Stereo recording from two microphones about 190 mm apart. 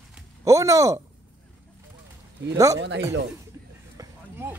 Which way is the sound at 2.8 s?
65° right (ahead or behind).